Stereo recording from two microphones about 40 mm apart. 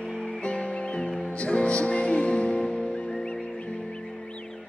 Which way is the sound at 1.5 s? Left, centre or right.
Left.